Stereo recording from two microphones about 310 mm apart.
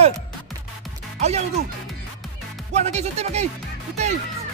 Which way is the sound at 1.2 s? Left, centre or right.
Right.